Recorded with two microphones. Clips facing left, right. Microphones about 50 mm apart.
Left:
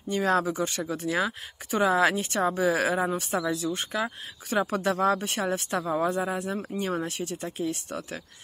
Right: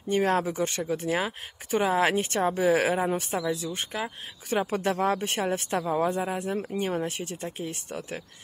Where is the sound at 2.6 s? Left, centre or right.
Right.